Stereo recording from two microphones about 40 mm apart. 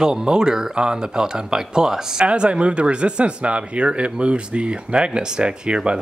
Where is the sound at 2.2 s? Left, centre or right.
Right.